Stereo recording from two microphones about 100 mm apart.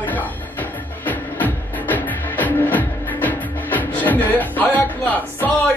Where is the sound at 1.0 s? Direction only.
15° left (ahead or behind).